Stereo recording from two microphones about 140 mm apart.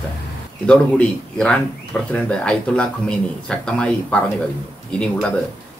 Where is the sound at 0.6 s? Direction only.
5° left (ahead or behind).